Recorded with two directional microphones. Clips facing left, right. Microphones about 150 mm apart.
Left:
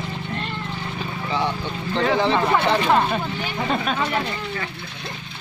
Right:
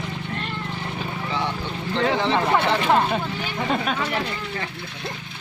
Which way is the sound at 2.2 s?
10° left (ahead or behind).